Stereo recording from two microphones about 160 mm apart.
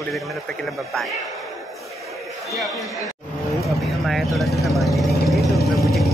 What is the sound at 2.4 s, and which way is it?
Speech, centre (ahead or behind).